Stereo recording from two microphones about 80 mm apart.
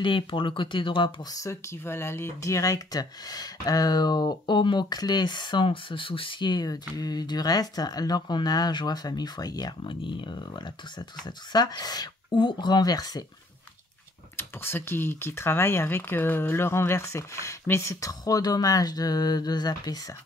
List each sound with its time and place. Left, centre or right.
0.0 s speech: left
1.3 s speech: left
14.3 s speech: left